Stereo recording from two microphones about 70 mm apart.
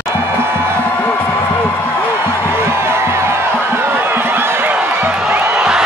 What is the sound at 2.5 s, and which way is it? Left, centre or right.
Music, right.